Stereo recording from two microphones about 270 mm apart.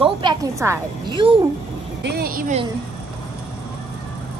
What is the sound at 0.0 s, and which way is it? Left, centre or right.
A woman's voice, centre.